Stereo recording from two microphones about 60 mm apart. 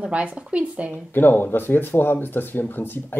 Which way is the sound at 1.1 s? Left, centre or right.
Left.